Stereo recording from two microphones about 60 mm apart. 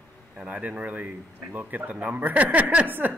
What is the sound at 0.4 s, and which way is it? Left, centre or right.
Speech, right.